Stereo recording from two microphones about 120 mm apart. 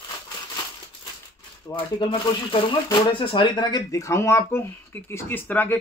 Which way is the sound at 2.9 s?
45° left (ahead or behind).